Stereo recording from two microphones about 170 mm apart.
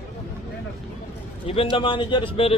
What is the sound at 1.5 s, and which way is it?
Speech, 30° left (ahead or behind).